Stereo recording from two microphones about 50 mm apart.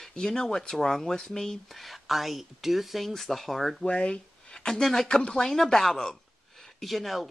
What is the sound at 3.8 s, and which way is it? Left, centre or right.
Speech, left.